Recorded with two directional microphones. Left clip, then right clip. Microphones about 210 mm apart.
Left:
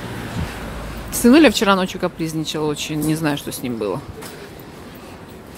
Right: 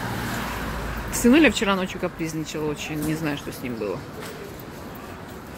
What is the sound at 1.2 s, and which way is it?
Speech, 20° left (ahead or behind).